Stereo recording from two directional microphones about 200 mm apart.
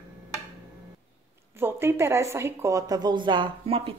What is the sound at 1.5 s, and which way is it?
Speech, 10° right (ahead or behind).